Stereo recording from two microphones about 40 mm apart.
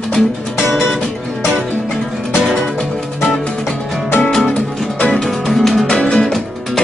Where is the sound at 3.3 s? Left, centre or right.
Centre.